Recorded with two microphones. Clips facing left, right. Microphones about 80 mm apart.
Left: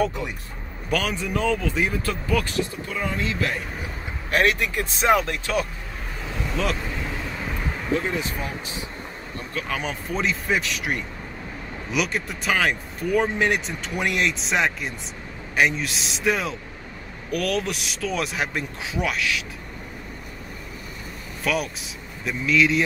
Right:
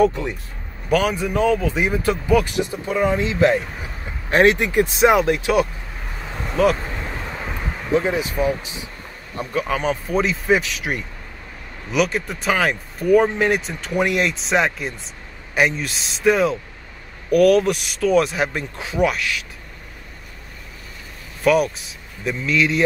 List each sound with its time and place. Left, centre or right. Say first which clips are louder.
0.8 s speech: right 6 dB; centre
7.2 s vehicle: right 1 dB; right
7.9 s speech: right 6 dB; centre
9.8 s speech: right 7 dB; centre
21.5 s speech: right 9 dB; centre